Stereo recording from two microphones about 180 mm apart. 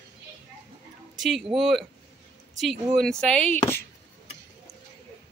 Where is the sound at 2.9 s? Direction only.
5° left (ahead or behind).